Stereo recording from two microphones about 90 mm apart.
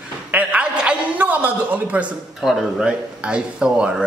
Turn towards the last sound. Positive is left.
turn(degrees=-10)  # may be behind; listen again after turning